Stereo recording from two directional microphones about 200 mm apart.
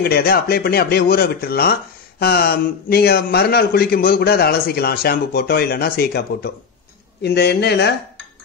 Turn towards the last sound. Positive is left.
turn(degrees=55)  # may be behind; listen again after turning